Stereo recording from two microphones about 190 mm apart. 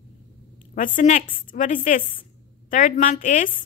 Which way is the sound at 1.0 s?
45° left (ahead or behind).